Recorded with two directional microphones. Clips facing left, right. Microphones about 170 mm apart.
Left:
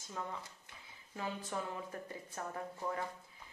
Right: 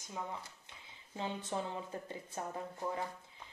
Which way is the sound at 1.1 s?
25° right (ahead or behind).